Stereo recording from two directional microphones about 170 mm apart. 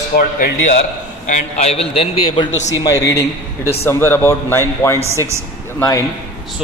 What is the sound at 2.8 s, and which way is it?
A man's voice, 20° left (ahead or behind).